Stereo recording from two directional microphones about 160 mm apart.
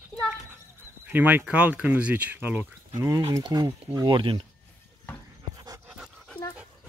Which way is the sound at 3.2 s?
25° right (ahead or behind).